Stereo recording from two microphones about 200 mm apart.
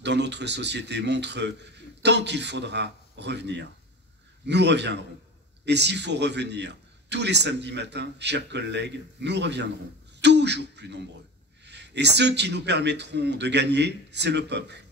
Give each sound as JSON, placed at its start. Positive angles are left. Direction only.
{"t": 0.0, "sound": "a man's voice", "side_deg": -60}